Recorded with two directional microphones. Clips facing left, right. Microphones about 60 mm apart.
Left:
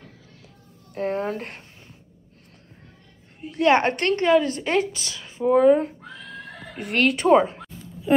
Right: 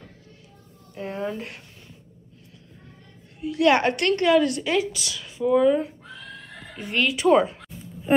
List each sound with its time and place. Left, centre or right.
0.9 s speech: left
3.3 s a woman's voice: left
6.8 s speech: left
7.2 s a woman's voice: left